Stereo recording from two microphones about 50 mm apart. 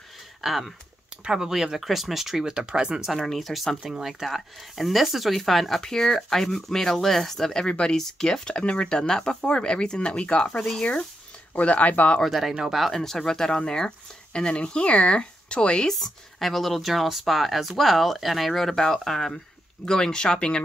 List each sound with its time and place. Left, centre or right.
0.4 s speech: centre
1.2 s speech: centre
3.3 s speech: centre
7.6 s speech: centre
11.5 s speech: left
12.3 s speech: centre
12.9 s speech: centre
15.9 s speech: centre